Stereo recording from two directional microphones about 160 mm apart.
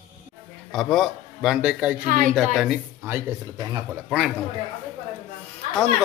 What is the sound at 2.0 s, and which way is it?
Speech, 55° right (ahead or behind).